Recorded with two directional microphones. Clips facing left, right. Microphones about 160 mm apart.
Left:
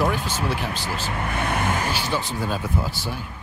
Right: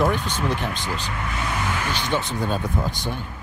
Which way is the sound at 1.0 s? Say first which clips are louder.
Left 2 dB; 55° left (ahead or behind).